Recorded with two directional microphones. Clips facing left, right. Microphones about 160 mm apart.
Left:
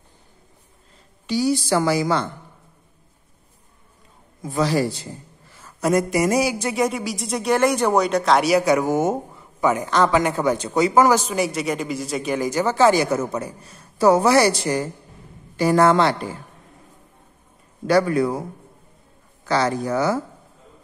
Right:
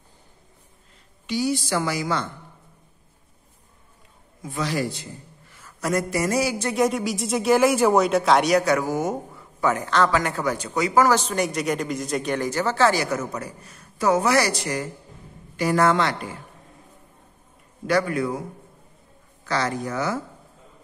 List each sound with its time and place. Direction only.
1.2 s a woman's voice: 35° left (ahead or behind)
4.4 s a woman's voice: 35° left (ahead or behind)
5.6 s a man's voice: 20° left (ahead or behind)
6.7 s speech: centre (ahead or behind)
8.7 s speech: 20° left (ahead or behind)
11.1 s a man's voice: 10° left (ahead or behind); by 16.3 s 30° left (ahead or behind)
17.8 s a woman's voice: 35° left (ahead or behind)
19.4 s a woman's voice: 30° left (ahead or behind)